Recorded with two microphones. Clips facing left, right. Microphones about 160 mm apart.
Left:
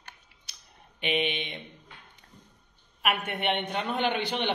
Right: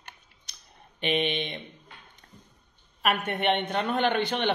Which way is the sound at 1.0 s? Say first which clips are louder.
Right 2 dB; 5° left (ahead or behind).